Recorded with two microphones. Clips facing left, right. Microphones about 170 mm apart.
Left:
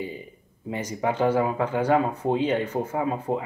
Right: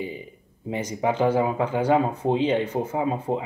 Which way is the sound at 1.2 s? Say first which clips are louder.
Even; 20° right (ahead or behind).